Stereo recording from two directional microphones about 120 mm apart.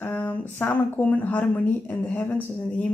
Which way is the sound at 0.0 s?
15° left (ahead or behind).